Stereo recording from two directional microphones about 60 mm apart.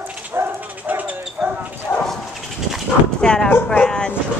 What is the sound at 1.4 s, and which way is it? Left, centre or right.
Bow-wow, right.